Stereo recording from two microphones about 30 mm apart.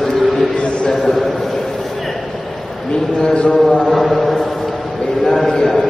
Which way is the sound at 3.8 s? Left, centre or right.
Centre.